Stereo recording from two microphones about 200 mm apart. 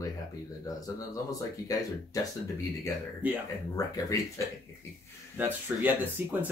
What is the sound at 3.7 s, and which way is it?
Speech, 15° left (ahead or behind).